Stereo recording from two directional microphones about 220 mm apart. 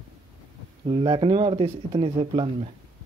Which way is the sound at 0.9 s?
20° right (ahead or behind).